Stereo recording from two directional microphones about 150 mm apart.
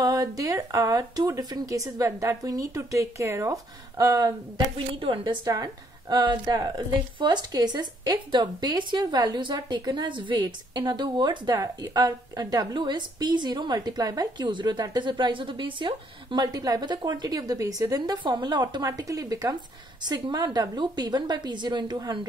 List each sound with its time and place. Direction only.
0.0 s a woman's voice: 25° right (ahead or behind)
5.0 s a woman's voice: 35° right (ahead or behind)